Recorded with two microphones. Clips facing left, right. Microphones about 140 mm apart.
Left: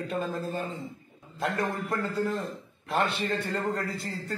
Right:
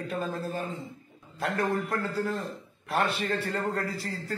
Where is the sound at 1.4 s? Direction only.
Centre (ahead or behind).